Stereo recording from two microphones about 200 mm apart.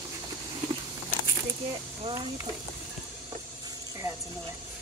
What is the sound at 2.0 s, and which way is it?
Speech, 15° right (ahead or behind).